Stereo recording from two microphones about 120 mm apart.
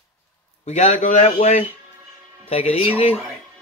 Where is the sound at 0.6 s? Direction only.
85° left.